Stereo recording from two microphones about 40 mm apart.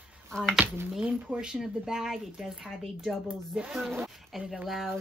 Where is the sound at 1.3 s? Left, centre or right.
Right.